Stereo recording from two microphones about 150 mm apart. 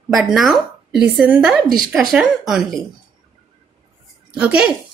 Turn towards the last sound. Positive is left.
turn(degrees=-10)  # may be behind; listen again after turning